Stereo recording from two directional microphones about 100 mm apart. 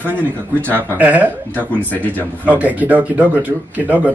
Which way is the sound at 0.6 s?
20° right (ahead or behind).